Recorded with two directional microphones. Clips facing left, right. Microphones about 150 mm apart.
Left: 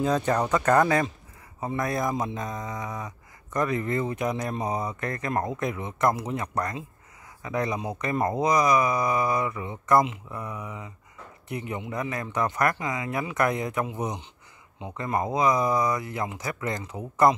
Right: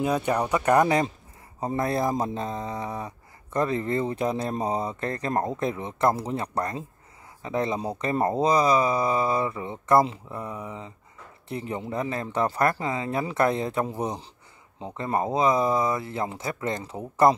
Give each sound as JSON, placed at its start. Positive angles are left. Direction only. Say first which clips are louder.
{"t": 0.0, "sound": "speech", "louder": "even", "side_deg": -15}
{"t": 1.6, "sound": "speech", "louder": "right 2 dB", "side_deg": -30}